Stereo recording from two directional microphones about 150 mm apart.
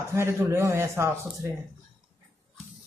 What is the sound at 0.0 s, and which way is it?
Speech, 15° right (ahead or behind).